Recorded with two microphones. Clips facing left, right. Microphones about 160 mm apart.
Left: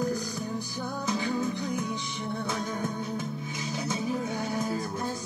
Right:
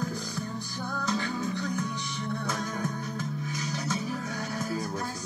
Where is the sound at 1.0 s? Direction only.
20° left (ahead or behind).